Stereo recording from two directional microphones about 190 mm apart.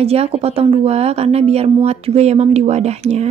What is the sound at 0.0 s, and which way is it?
A woman's voice, 30° right (ahead or behind).